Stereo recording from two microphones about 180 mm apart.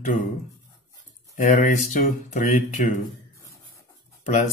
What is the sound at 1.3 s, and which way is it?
Speech, 40° left (ahead or behind).